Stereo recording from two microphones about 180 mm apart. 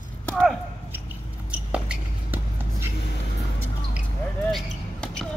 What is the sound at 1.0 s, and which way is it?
Basketball bounce, 5° right (ahead or behind).